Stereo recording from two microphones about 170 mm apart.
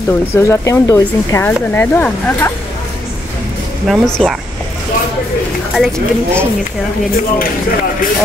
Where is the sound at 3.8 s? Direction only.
Centre (ahead or behind).